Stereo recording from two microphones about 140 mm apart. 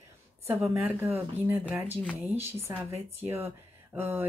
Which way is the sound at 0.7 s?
15° right (ahead or behind).